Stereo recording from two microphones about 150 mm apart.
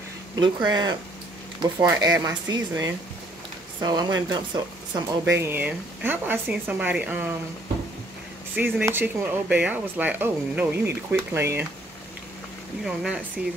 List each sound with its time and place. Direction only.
0.4 s speech: 30° right (ahead or behind)
2.0 s speech: 25° right (ahead or behind)
4.9 s speech: 15° right (ahead or behind)
8.5 s speech: 10° right (ahead or behind)
12.8 s speech: 5° right (ahead or behind)